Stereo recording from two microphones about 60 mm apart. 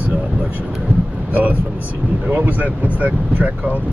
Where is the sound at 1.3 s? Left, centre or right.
Right.